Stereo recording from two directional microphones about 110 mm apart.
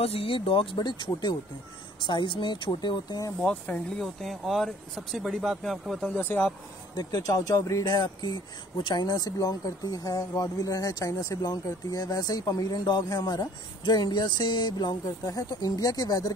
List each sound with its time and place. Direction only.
0.0 s speech: 60° left (ahead or behind); by 3.3 s 35° left (ahead or behind)
3.3 s speech: 10° left (ahead or behind)
4.0 s speech: centre (ahead or behind)
6.0 s speech: 15° left (ahead or behind)
7.0 s speech: 40° left (ahead or behind)